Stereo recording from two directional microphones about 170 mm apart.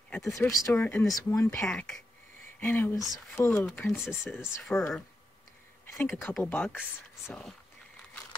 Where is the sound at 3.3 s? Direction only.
15° left (ahead or behind).